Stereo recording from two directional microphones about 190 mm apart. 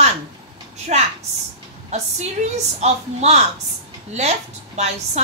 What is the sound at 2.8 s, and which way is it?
Speech, 35° right (ahead or behind).